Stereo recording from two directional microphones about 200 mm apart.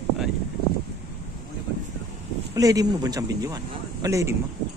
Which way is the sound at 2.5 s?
15° right (ahead or behind).